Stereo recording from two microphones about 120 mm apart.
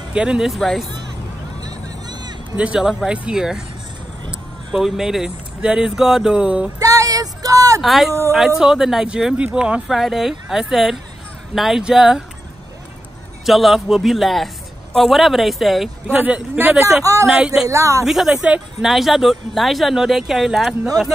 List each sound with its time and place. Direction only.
0.1 s speech: 5° right (ahead or behind)
1.6 s vehicle: 35° right (ahead or behind)
2.5 s speech: 10° right (ahead or behind)
6.8 s a sound: 30° right (ahead or behind)
7.8 s speech: centre (ahead or behind)
13.5 s speech: centre (ahead or behind)
16.1 s speech: 10° right (ahead or behind)
17.0 s speech: 25° right (ahead or behind)
18.0 s speech: centre (ahead or behind)